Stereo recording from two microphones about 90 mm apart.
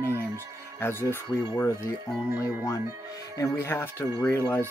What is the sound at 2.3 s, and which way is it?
Speech, 30° left (ahead or behind).